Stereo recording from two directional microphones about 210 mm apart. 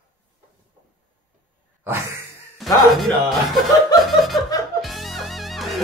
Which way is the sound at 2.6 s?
Centre (ahead or behind).